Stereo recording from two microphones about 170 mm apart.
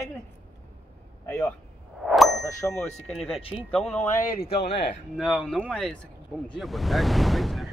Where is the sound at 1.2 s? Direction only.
10° left (ahead or behind).